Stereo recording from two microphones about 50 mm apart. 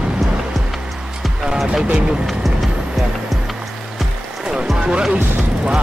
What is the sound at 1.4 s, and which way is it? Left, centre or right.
Speech, centre.